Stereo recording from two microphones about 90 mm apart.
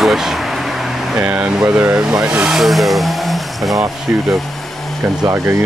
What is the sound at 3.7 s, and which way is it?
Speech, 35° right (ahead or behind).